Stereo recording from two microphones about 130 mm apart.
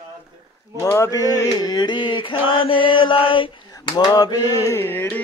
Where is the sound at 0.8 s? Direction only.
25° left (ahead or behind).